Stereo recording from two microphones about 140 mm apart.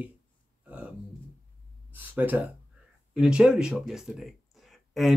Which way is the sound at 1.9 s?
15° right (ahead or behind).